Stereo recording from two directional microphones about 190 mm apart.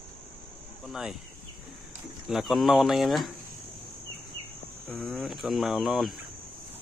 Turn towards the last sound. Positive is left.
turn(degrees=0)  # may be behind; listen again after turning